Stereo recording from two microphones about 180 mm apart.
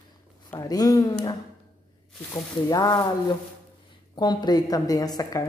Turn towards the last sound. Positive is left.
turn(degrees=20)  # may be behind; listen again after turning